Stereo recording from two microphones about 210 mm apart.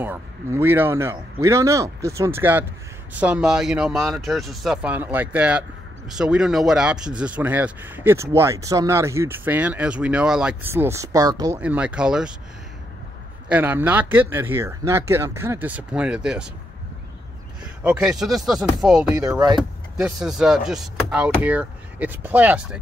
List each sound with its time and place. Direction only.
0.0 s speech: 10° right (ahead or behind)
11.6 s speech: 5° right (ahead or behind)
13.5 s speech: 10° right (ahead or behind)
17.8 s speech: 5° right (ahead or behind)
19.3 s speech: 20° right (ahead or behind)
20.0 s speech: 5° right (ahead or behind)